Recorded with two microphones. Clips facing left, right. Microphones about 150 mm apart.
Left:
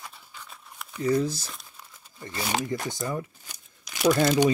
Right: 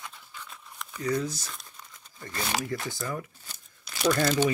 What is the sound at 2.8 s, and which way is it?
Speech, 25° left (ahead or behind).